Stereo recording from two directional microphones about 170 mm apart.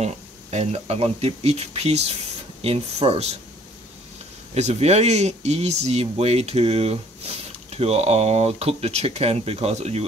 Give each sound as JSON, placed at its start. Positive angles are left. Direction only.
{"t": 0.0, "sound": "speech", "side_deg": -40}
{"t": 4.6, "sound": "speech", "side_deg": -40}